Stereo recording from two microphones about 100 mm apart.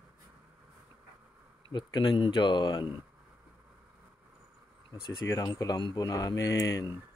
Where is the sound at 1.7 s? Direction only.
45° left (ahead or behind).